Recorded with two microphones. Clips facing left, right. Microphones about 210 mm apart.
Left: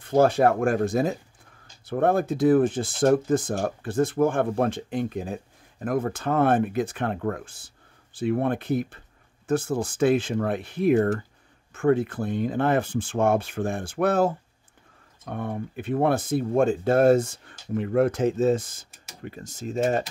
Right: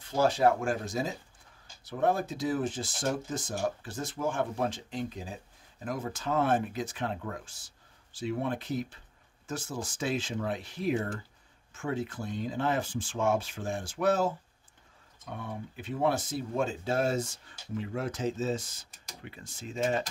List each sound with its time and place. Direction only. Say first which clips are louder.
0.0 s speech: left 6 dB; 55° left (ahead or behind)